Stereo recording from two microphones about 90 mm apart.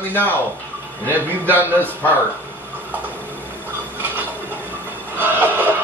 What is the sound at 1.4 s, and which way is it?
Speech, 25° right (ahead or behind).